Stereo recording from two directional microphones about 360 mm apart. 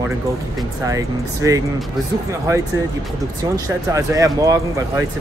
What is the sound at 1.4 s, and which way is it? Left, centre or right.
Speech, centre.